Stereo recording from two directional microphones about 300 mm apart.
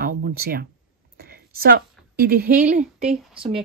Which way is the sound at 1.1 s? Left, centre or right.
Right.